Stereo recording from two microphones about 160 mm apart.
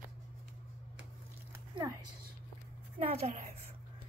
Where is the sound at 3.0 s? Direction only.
40° right (ahead or behind).